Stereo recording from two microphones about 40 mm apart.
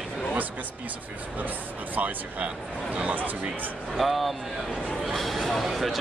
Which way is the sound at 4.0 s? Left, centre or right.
Centre.